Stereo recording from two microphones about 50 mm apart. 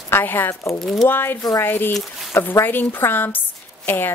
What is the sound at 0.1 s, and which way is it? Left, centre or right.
Speech, left.